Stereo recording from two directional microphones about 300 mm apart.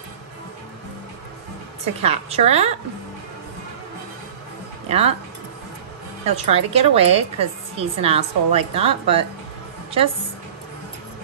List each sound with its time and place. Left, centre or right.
2.0 s a woman's voice: right
4.8 s speech: centre
6.2 s a woman's voice: centre